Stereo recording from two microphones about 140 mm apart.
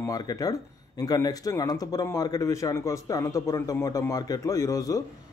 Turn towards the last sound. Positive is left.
turn(degrees=25)  # may be behind; listen again after turning